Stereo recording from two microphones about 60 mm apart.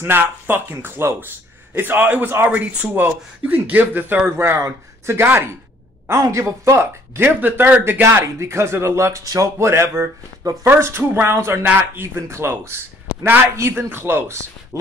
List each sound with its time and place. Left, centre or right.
0.0 s speech: right
4.4 s speech: right
6.2 s speech: right
7.2 s speech: right
9.2 s speech: right
9.6 s speech: right
11.6 s speech: right
14.2 s speech: right